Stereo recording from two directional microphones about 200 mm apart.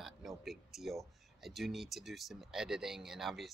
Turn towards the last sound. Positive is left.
turn(degrees=0)  # may be behind; listen again after turning